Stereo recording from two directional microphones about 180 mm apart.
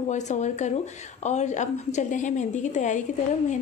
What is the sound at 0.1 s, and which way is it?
A woman's voice, 40° left (ahead or behind).